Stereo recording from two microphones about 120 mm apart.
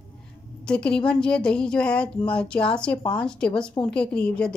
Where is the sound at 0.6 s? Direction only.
10° left (ahead or behind).